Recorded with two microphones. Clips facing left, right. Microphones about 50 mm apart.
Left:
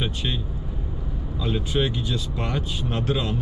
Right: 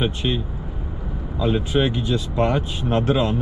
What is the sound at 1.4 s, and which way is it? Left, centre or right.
Speech, centre.